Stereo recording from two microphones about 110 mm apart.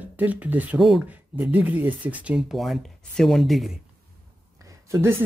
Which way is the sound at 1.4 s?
15° right (ahead or behind).